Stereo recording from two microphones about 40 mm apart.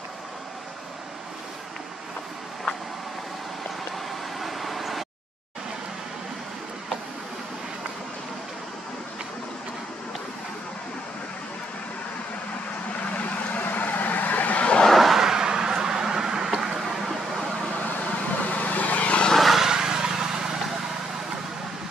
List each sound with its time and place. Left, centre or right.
4.4 s vehicle: centre
13.2 s vehicle: left
14.9 s vehicle: centre
15.2 s vehicle: centre
18.5 s vehicle: left
19.3 s vehicle: centre
19.7 s vehicle: centre